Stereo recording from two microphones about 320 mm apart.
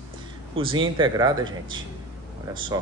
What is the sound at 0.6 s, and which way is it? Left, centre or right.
Speech, centre.